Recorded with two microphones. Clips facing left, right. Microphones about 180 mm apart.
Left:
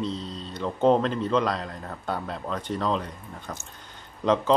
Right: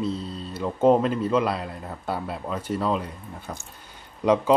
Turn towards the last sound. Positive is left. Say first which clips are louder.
# right 2 dB
turn(degrees=-10)  # may be behind; listen again after turning